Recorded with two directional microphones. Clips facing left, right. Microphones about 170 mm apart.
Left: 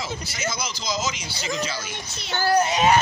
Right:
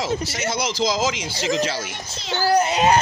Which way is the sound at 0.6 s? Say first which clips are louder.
Right 10 dB; 90° right.